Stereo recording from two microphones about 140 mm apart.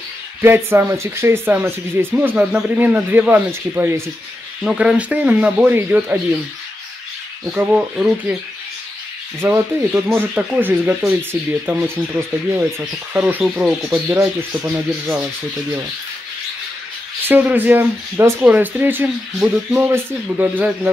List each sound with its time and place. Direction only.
0.4 s speech: 15° right (ahead or behind)
7.4 s speech: 10° right (ahead or behind)
9.4 s speech: 15° right (ahead or behind)
17.3 s speech: 10° right (ahead or behind)